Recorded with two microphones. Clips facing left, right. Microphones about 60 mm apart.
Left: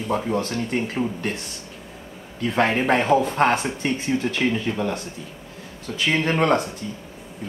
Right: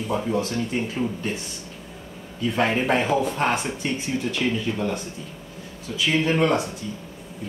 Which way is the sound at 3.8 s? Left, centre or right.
Left.